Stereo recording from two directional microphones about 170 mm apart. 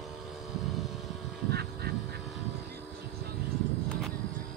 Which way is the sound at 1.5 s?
70° right (ahead or behind).